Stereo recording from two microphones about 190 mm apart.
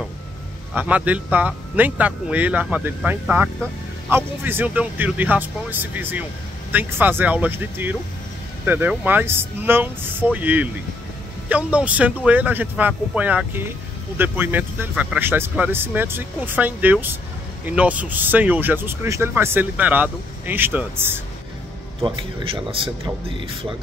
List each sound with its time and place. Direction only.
0.7 s speech: 10° right (ahead or behind)
22.0 s a man's voice: 30° right (ahead or behind)